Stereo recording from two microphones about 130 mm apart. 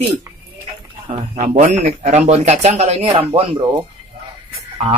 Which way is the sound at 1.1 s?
60° right (ahead or behind).